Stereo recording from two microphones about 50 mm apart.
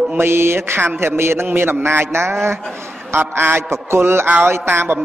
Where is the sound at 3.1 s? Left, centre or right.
Right.